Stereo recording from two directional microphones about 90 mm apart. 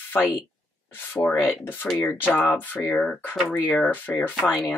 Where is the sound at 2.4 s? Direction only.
20° left (ahead or behind).